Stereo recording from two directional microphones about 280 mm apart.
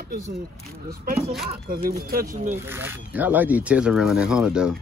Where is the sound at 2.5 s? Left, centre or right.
Centre.